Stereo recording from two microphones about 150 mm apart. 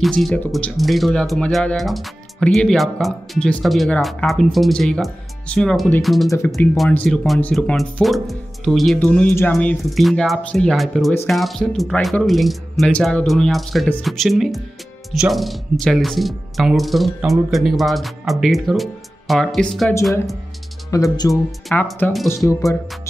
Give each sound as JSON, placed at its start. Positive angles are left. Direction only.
{"t": 0.0, "sound": "speech", "side_deg": 0}
{"t": 20.9, "sound": "speech", "side_deg": 20}
{"t": 21.7, "sound": "speech", "side_deg": 10}